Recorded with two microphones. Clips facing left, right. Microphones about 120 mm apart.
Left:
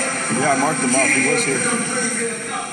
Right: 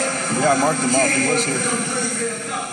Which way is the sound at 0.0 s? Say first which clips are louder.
Right 1 dB; 30° right (ahead or behind).